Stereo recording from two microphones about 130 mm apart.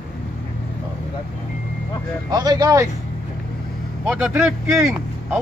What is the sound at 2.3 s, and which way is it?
Speech, 30° right (ahead or behind).